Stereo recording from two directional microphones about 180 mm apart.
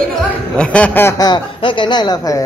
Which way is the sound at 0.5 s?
5° left (ahead or behind).